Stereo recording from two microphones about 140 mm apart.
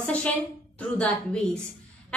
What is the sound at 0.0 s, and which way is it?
A woman's voice, 10° left (ahead or behind).